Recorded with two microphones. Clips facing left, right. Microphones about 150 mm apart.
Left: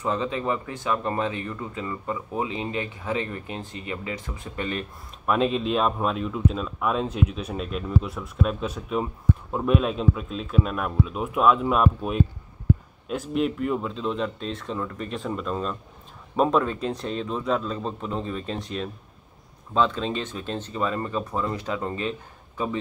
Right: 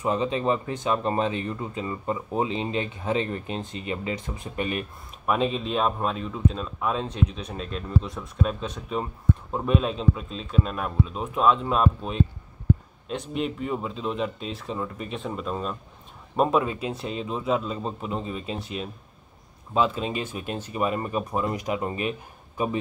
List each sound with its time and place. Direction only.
0.0 s speech: 20° right (ahead or behind)
5.2 s speech: centre (ahead or behind)